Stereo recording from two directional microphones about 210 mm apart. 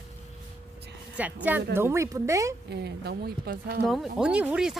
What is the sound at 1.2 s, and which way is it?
Speech, 10° right (ahead or behind).